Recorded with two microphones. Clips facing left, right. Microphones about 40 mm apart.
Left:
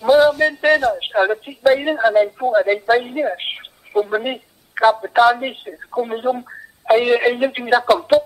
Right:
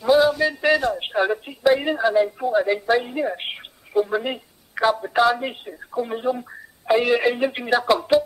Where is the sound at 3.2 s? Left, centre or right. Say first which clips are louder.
Left 4 dB; left.